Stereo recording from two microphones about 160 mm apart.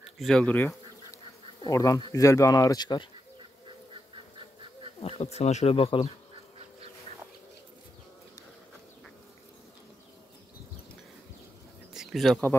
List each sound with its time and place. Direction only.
0.2 s duck: 5° left (ahead or behind)
1.6 s speech: 20° left (ahead or behind)
5.0 s speech: 40° left (ahead or behind)
11.9 s a sound: centre (ahead or behind)